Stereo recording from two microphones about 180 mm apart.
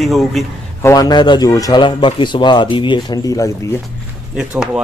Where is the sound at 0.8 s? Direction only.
20° left (ahead or behind).